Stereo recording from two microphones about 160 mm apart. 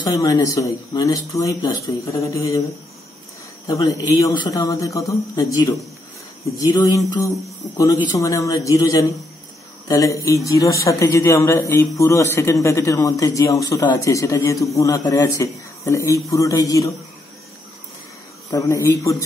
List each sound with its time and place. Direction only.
0.0 s speech: 25° left (ahead or behind)
3.6 s speech: 25° left (ahead or behind)
18.5 s speech: 20° left (ahead or behind)